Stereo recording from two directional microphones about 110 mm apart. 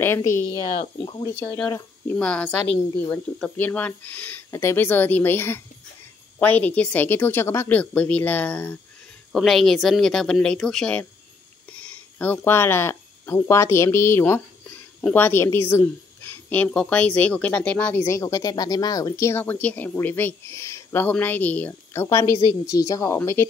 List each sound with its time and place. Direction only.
0.0 s speech: 20° left (ahead or behind)
0.7 s speech: 50° left (ahead or behind)
2.0 s speech: 10° left (ahead or behind)
9.3 s speech: centre (ahead or behind)
18.0 s a woman's voice: 30° left (ahead or behind)